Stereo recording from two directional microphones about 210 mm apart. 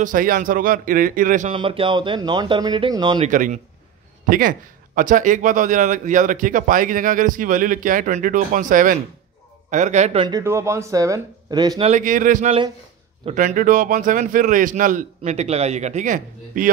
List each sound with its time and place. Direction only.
0.0 s a man's voice: 40° right (ahead or behind)
1.5 s speech: 25° right (ahead or behind)
3.3 s a man's voice: 35° right (ahead or behind)
10.2 s speech: 15° right (ahead or behind)
11.9 s a man's voice: 40° right (ahead or behind)